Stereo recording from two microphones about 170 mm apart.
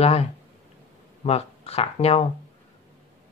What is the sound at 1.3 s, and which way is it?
Speech, 35° left (ahead or behind).